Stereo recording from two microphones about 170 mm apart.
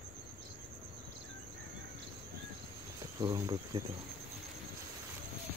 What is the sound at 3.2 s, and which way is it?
Speech, 20° right (ahead or behind).